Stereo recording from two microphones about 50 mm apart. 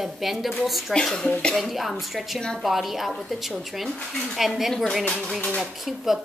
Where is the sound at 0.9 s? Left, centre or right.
Centre.